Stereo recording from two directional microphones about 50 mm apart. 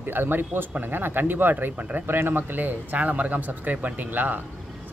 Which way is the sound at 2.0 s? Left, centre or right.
Right.